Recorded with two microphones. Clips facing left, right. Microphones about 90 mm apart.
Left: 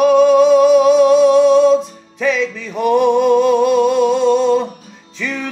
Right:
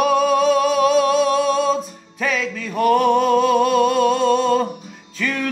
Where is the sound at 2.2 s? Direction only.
Centre (ahead or behind).